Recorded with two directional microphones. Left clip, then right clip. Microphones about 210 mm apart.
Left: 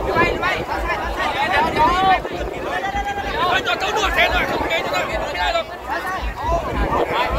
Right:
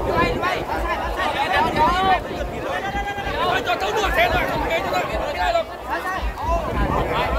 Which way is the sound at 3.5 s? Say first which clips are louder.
Left 1 dB; 50° right (ahead or behind).